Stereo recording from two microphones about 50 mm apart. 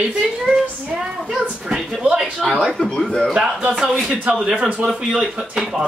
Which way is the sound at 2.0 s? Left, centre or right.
Right.